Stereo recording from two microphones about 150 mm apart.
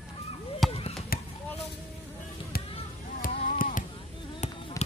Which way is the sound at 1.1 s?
85° left.